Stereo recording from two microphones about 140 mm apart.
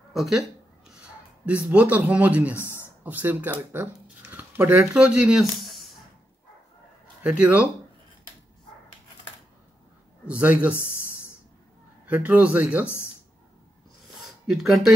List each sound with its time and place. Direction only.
0.1 s speech: 5° right (ahead or behind)
7.4 s speech: 10° right (ahead or behind)
10.2 s speech: 10° right (ahead or behind)
10.8 s a sound: 15° left (ahead or behind)
12.1 s speech: 10° right (ahead or behind)
12.8 s speech: 15° left (ahead or behind)
14.5 s speech: 5° right (ahead or behind)